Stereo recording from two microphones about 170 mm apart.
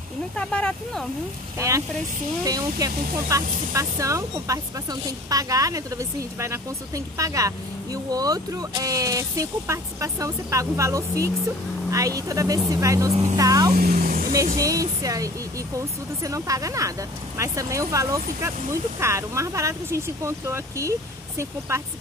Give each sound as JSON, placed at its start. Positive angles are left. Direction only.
{"t": 0.4, "sound": "speech", "side_deg": 5}
{"t": 2.4, "sound": "speech", "side_deg": -20}
{"t": 13.7, "sound": "vehicle", "side_deg": -60}
{"t": 14.6, "sound": "speech", "side_deg": -20}